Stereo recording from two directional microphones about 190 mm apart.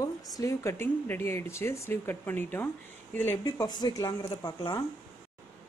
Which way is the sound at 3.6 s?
20° left (ahead or behind).